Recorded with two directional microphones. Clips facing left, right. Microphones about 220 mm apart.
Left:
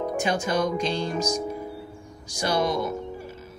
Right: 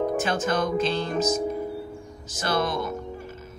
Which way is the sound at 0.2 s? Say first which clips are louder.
Even; 15° left (ahead or behind).